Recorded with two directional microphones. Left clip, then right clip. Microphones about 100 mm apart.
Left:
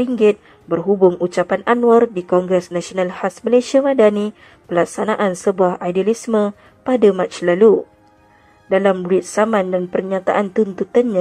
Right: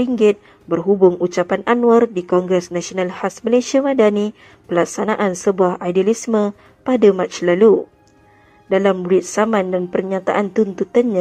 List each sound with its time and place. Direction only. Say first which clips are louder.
0.0 s a woman's voice: even; 25° left (ahead or behind)
3.0 s a woman's voice: left 2 dB; 30° left (ahead or behind); by 11.0 s 15° left (ahead or behind)